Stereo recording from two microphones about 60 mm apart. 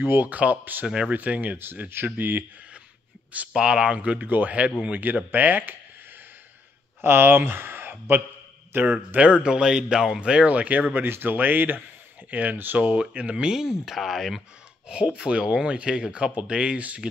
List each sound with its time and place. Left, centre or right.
0.0 s speech: right
0.8 s speech: centre
1.1 s speech: right
3.5 s speech: centre; by 5.8 s right
7.0 s speech: right
9.1 s speech: right
13.8 s speech: centre
14.9 s speech: centre